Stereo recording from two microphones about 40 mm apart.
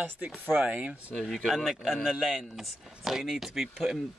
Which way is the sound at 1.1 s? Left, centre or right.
Centre.